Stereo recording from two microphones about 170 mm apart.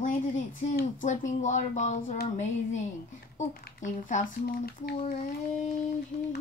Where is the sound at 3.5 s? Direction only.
55° left (ahead or behind).